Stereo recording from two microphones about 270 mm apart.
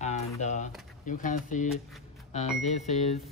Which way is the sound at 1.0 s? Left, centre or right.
Left.